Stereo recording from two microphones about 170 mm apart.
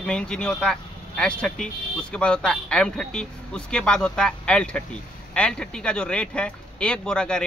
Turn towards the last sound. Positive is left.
turn(degrees=5)  # may be behind; listen again after turning